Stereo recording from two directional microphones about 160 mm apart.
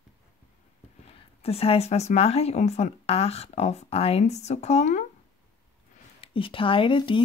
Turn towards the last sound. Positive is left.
turn(degrees=30)  # may be behind; listen again after turning